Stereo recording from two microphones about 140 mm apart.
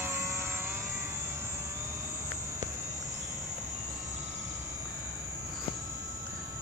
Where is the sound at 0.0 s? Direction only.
20° right (ahead or behind).